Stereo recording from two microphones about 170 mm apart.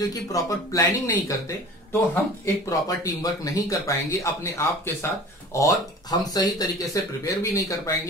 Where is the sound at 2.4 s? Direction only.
20° left (ahead or behind).